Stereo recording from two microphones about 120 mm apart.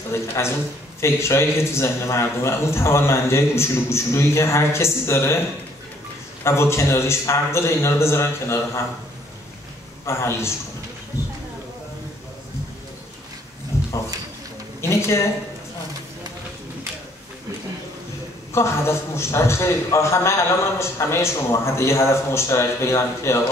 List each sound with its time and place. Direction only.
0.1 s a man's voice: 20° left (ahead or behind)
6.4 s a man's voice: 20° left (ahead or behind)
10.0 s a man's voice: 20° left (ahead or behind)
13.7 s a sound: 25° left (ahead or behind)
18.5 s a man's voice: 20° left (ahead or behind)